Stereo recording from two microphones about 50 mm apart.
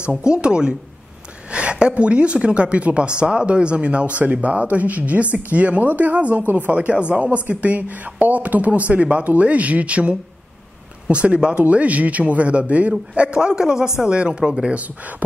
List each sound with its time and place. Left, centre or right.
0.1 s a woman's voice: centre
14.8 s speech: right